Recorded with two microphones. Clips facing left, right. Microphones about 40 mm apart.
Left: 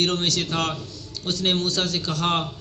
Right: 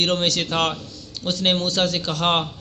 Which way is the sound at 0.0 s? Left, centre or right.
Right.